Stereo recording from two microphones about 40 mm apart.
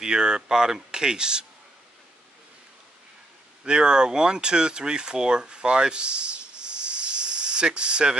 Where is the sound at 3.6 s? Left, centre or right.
Right.